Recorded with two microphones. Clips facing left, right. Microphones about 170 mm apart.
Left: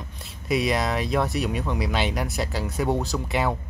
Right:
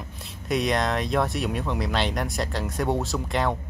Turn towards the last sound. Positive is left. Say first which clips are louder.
# even
turn(degrees=5)  # may be behind; listen again after turning